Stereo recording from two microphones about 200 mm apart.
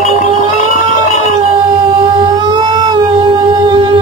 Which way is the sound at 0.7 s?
40° left (ahead or behind).